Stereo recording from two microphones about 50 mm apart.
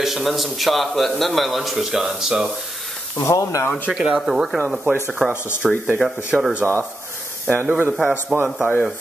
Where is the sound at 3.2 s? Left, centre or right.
Left.